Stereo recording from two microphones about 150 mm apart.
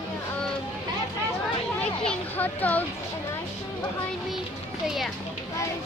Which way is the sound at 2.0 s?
10° left (ahead or behind).